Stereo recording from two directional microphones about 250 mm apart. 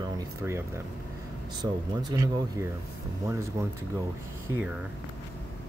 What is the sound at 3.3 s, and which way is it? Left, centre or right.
Speech, centre.